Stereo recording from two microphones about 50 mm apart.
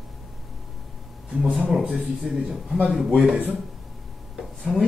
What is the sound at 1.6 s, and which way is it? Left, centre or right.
Speech, centre.